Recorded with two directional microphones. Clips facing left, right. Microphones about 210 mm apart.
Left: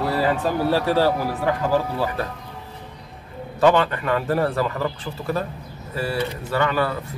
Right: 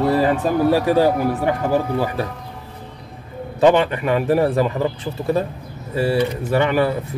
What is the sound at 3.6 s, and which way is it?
Speech, 20° right (ahead or behind).